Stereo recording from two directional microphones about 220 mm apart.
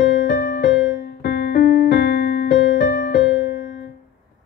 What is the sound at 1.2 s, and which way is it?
Music, 50° left (ahead or behind).